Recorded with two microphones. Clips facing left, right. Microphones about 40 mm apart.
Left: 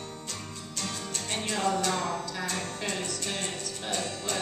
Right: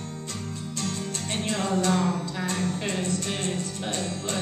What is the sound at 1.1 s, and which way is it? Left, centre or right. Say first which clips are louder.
Music: right 3 dB; right.